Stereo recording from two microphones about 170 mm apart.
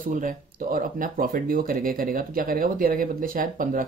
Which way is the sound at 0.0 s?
50° right (ahead or behind).